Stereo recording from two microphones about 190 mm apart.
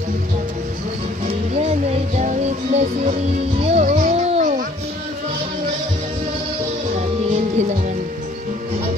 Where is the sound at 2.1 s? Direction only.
35° right (ahead or behind).